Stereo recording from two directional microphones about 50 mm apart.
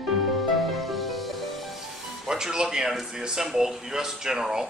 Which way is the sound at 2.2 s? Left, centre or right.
Centre.